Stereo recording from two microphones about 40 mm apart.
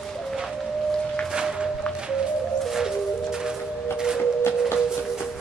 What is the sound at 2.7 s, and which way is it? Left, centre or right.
Music, centre.